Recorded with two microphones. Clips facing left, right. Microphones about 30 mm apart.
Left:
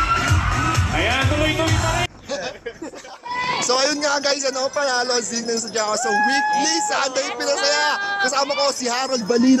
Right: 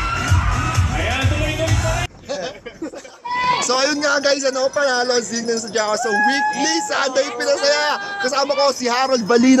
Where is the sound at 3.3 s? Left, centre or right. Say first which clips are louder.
Right 5 dB; centre.